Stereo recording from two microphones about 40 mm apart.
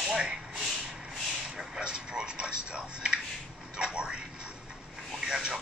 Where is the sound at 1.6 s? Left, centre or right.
Right.